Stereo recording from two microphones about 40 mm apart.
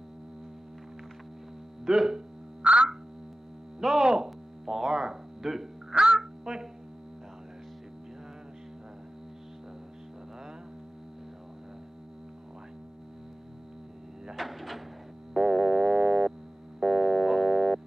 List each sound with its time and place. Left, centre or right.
1.9 s speech: centre
2.6 s frog: right
4.0 s insect: centre
4.8 s speech: centre
5.9 s music: centre
14.3 s a sound: centre
15.3 s synthesizer: centre
16.8 s music: centre